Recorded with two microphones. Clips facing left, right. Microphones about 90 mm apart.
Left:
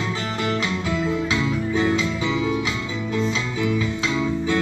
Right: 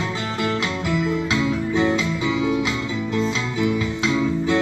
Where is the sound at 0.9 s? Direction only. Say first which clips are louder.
Right 2 dB; 30° left (ahead or behind).